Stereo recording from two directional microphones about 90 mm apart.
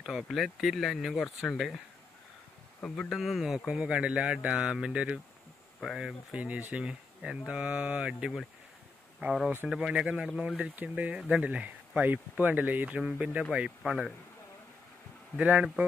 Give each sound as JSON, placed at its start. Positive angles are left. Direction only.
{"t": 0.0, "sound": "speech", "side_deg": 0}
{"t": 2.8, "sound": "speech", "side_deg": 5}
{"t": 5.8, "sound": "speech", "side_deg": 0}
{"t": 6.3, "sound": "speech", "side_deg": -15}
{"t": 15.3, "sound": "speech", "side_deg": -15}